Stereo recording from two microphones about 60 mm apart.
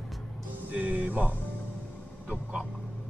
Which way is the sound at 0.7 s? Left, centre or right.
Right.